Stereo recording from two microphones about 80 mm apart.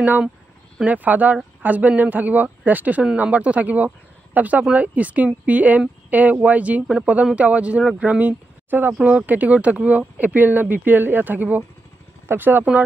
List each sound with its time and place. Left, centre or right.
0.8 s speech: right